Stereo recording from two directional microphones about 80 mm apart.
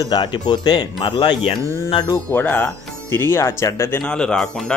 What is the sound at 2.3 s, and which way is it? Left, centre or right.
Speech, left.